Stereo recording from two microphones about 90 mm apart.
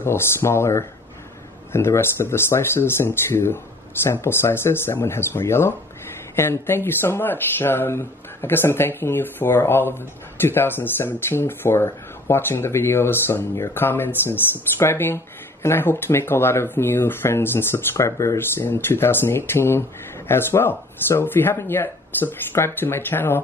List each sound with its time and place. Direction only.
0.0 s speech: 30° left (ahead or behind)